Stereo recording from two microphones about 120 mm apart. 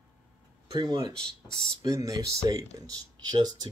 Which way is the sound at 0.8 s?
30° right (ahead or behind).